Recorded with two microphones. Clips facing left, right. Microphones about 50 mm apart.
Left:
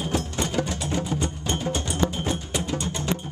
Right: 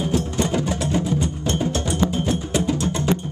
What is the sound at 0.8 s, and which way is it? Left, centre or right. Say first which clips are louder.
Music: right 5 dB; centre.